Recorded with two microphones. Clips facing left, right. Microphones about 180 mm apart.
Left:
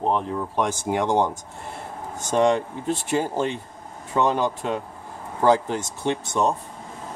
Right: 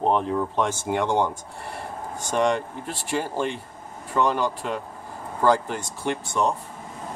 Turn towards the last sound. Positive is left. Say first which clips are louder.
# left 2 dB
turn(degrees=20)  # may be behind; listen again after turning